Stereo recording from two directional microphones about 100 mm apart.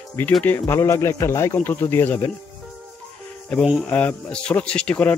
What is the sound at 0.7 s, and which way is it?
A man's voice, 30° left (ahead or behind).